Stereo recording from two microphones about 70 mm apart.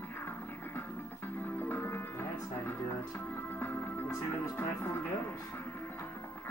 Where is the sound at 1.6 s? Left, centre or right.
Left.